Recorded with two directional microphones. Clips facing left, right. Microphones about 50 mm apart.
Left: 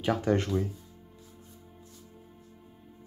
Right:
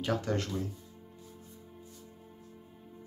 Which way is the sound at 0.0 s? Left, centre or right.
Centre.